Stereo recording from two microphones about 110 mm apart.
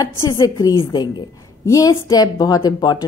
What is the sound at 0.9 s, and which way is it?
Speech, 40° left (ahead or behind).